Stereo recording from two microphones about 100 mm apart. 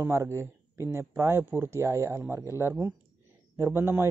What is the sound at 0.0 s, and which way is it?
Speech, 25° right (ahead or behind).